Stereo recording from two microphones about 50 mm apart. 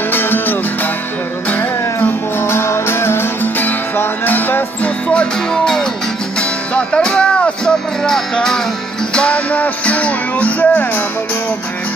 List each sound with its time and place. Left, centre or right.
0.1 s music: left
2.4 s music: left
4.3 s music: left
4.8 s music: left
5.5 s music: centre
6.7 s music: left